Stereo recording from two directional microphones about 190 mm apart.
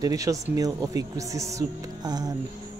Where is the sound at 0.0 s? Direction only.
20° right (ahead or behind).